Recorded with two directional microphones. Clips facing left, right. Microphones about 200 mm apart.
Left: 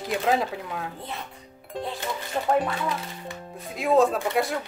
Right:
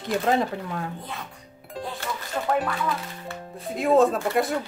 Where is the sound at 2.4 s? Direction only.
20° left (ahead or behind).